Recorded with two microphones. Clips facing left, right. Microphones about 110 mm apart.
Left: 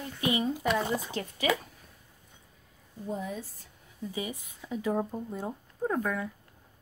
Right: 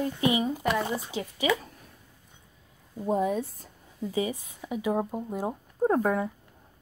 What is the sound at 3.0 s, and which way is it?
Speech, 70° right (ahead or behind).